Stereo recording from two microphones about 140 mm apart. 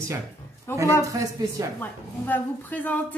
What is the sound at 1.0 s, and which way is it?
Speech, 25° right (ahead or behind).